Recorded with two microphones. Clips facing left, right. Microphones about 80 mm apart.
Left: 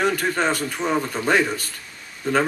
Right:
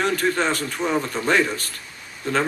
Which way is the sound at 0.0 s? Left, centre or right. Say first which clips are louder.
Even; centre.